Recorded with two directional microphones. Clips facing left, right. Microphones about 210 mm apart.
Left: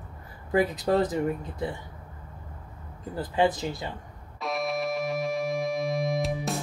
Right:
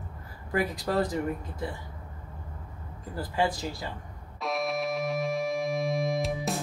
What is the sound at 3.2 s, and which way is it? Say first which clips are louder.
Speech: left 4 dB; 20° left (ahead or behind).